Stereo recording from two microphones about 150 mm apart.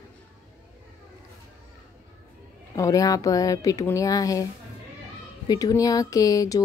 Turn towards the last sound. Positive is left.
turn(degrees=25)  # may be behind; listen again after turning